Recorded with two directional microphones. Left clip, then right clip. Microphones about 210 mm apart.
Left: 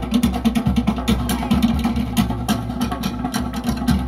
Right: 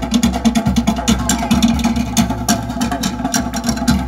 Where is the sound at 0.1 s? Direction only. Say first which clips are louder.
Right 3 dB; 15° right (ahead or behind).